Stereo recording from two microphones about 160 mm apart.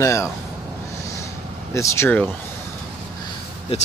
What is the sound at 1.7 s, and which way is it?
Speech, 15° left (ahead or behind).